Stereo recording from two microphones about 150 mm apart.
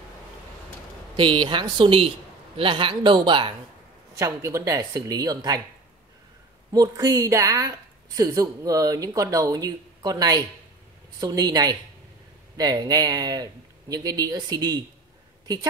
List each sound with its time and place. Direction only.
1.1 s a man's voice: 35° right (ahead or behind)
4.2 s speech: 20° right (ahead or behind)
6.7 s speech: 25° right (ahead or behind)